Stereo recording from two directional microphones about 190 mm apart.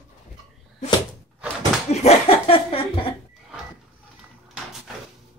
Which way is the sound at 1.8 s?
35° left (ahead or behind).